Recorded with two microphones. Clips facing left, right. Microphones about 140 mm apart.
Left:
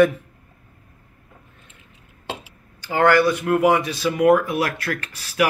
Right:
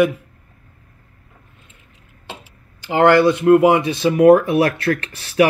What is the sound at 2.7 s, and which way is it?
Speech, 20° right (ahead or behind).